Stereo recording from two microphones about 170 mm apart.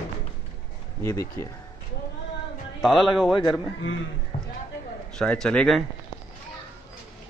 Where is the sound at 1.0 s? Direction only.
20° left (ahead or behind).